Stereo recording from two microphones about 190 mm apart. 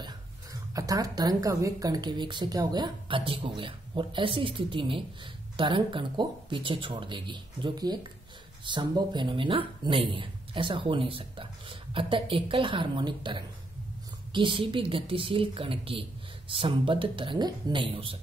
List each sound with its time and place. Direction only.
0.0 s speech: 20° right (ahead or behind)